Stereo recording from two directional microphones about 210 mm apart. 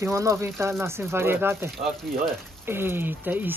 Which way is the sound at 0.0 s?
15° right (ahead or behind).